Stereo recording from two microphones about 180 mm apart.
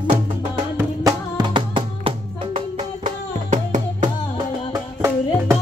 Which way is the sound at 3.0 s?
45° right (ahead or behind).